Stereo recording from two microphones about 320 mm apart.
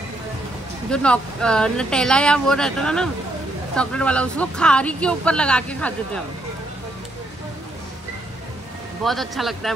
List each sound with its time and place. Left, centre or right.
0.8 s speech: centre
9.0 s speech: centre